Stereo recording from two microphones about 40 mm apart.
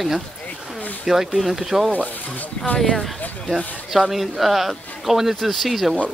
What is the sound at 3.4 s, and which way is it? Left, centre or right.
Speech, centre.